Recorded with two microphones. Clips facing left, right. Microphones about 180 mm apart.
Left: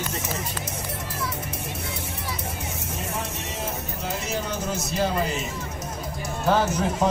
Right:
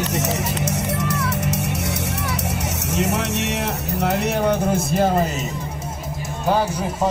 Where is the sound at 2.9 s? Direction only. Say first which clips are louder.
Right 11 dB; 75° right (ahead or behind); by 5.2 s 50° right (ahead or behind).